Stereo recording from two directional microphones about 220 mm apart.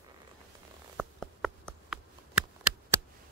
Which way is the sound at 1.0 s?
Centre (ahead or behind).